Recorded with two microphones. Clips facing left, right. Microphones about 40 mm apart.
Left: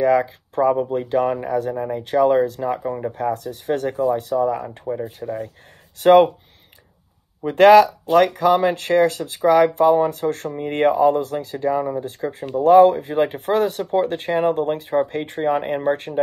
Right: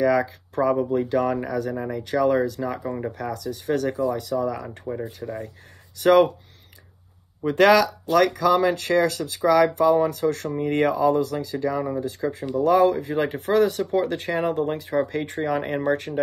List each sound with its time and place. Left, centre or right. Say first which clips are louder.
0.0 s speech: left 3 dB; left
2.7 s speech: left 4 dB; left
4.6 s speech: left 4 dB; centre
5.0 s speech: left 4 dB; left
5.9 s speech: left 4 dB; left
7.4 s speech: left 6 dB; left